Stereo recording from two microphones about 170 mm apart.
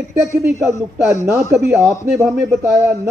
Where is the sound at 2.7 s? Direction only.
15° right (ahead or behind).